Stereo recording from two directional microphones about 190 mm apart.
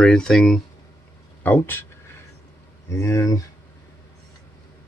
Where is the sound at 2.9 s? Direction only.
15° left (ahead or behind).